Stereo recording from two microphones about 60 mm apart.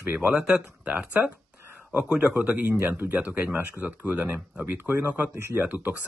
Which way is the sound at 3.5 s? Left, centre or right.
Right.